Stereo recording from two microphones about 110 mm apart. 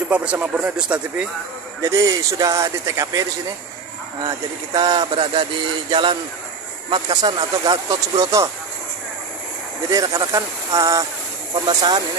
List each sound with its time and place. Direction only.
0.1 s speech: 10° right (ahead or behind)
1.8 s speech: 30° right (ahead or behind)
4.7 s speech: 40° right (ahead or behind)
9.8 s speech: 30° right (ahead or behind)